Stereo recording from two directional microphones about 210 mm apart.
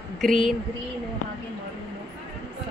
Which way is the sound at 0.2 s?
Centre (ahead or behind).